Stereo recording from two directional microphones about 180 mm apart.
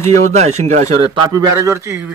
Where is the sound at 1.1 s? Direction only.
20° right (ahead or behind).